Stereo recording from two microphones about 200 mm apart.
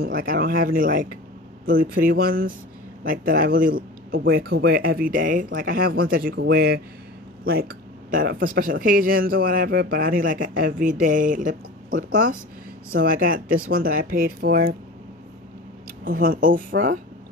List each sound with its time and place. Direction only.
0.0 s a man's voice: 45° right (ahead or behind)
16.1 s speech: 45° right (ahead or behind)